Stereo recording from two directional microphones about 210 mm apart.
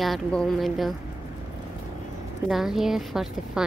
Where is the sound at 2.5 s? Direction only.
Centre (ahead or behind).